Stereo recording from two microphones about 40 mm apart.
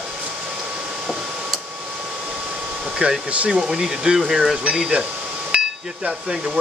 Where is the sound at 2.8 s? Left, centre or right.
Centre.